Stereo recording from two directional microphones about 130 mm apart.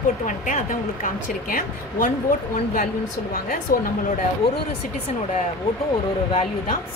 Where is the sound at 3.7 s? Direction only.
90° left.